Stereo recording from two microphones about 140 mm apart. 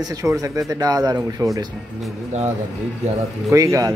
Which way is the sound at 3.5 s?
20° right (ahead or behind).